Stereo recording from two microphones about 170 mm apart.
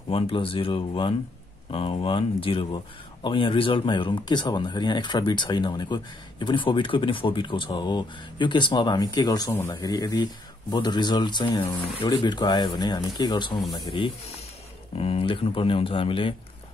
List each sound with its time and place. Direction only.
0.1 s speech: 30° left (ahead or behind)